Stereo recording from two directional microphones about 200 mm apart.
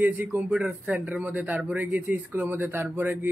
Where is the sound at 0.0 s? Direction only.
10° right (ahead or behind).